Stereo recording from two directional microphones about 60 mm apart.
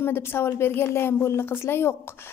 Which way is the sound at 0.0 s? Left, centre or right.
Left.